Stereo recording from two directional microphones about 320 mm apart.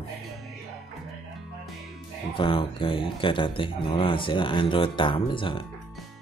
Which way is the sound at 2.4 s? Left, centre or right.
Centre.